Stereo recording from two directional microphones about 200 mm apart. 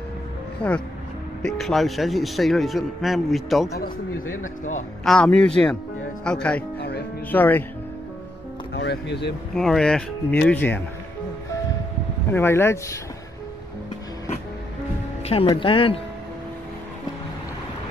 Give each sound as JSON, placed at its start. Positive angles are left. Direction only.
{"t": 0.6, "sound": "a man's voice", "side_deg": 5}
{"t": 5.0, "sound": "a man's voice", "side_deg": 5}
{"t": 8.7, "sound": "speech", "side_deg": 55}
{"t": 9.6, "sound": "a man's voice", "side_deg": 5}
{"t": 12.3, "sound": "speech", "side_deg": 10}
{"t": 15.2, "sound": "speech", "side_deg": 25}